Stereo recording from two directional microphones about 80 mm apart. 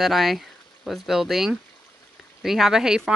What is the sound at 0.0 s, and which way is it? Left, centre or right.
Speech, centre.